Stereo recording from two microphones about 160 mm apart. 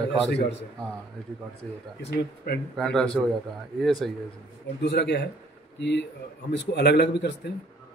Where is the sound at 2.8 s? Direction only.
5° left (ahead or behind).